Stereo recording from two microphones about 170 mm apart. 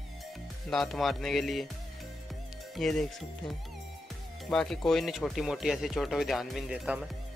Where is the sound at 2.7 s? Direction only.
Centre (ahead or behind).